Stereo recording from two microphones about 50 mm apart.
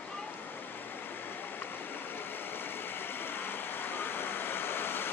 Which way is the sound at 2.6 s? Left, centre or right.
Left.